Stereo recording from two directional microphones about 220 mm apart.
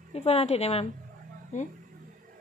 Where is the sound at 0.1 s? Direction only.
25° left (ahead or behind).